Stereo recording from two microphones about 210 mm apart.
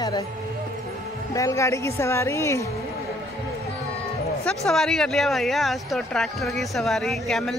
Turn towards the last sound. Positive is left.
turn(degrees=0)  # may be behind; listen again after turning